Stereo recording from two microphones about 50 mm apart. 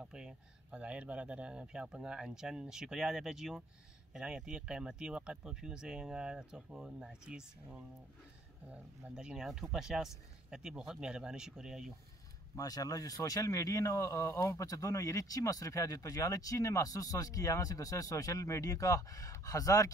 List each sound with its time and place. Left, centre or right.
0.0 s speech: centre
0.7 s speech: right
9.1 s speech: centre
12.5 s speech: left